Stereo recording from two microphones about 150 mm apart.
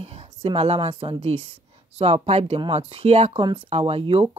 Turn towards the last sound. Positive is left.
turn(degrees=-40)  # may be behind; listen again after turning